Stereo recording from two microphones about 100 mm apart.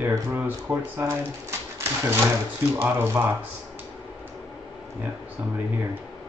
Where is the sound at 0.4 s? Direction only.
20° right (ahead or behind).